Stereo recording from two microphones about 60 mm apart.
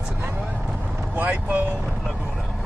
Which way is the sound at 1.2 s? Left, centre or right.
Right.